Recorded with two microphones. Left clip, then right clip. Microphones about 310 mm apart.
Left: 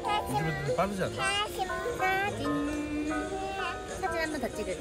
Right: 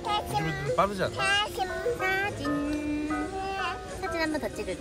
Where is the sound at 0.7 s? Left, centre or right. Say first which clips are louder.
Right 5 dB; right.